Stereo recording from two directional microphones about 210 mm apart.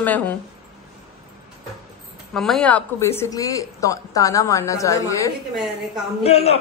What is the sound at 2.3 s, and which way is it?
A woman's voice, centre (ahead or behind).